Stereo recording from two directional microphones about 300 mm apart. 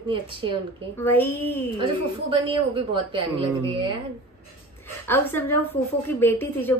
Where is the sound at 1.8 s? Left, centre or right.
Centre.